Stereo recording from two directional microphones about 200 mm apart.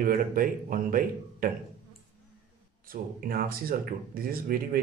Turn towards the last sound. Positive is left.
turn(degrees=-45)  # may be behind; listen again after turning